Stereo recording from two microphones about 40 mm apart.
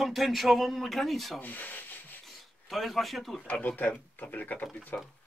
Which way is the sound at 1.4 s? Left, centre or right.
Left.